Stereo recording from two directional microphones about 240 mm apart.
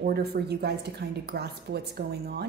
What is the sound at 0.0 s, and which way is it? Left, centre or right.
Speech, right.